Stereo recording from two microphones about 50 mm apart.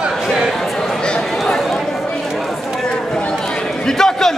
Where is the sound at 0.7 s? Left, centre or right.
Centre.